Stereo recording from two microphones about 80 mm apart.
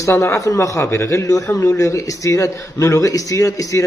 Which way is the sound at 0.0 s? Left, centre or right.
Left.